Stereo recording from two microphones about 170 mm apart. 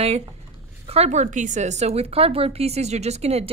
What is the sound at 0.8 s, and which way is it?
A woman's voice, 40° right (ahead or behind).